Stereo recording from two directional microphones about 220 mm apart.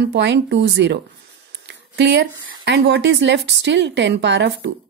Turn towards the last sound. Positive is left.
turn(degrees=-50)  # may be behind; listen again after turning